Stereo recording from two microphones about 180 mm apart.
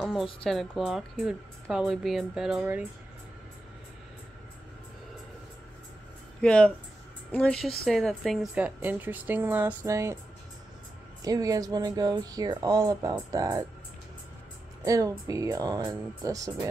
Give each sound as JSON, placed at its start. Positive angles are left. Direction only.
{"t": 0.0, "sound": "a woman's voice", "side_deg": 0}
{"t": 6.4, "sound": "a woman's voice", "side_deg": 5}
{"t": 11.2, "sound": "speech", "side_deg": -20}
{"t": 14.9, "sound": "speech", "side_deg": -20}